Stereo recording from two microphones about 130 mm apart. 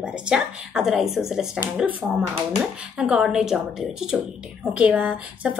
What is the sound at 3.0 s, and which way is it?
A woman's voice, 5° right (ahead or behind).